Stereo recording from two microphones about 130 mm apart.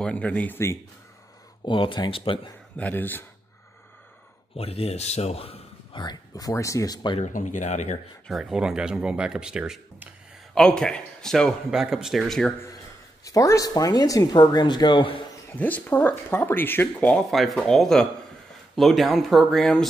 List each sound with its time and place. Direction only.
0.0 s speech: 10° left (ahead or behind)
1.6 s speech: 40° left (ahead or behind)
2.8 s speech: 15° left (ahead or behind)
4.6 s a man's voice: 50° left (ahead or behind)
6.0 s speech: 30° left (ahead or behind)
7.3 s speech: 70° left (ahead or behind)
8.3 s a man's voice: 5° right (ahead or behind)
10.5 s a man's voice: 5° left (ahead or behind)
13.2 s speech: 25° left (ahead or behind); by 15.2 s 40° left (ahead or behind)
15.5 s a man's voice: 15° left (ahead or behind)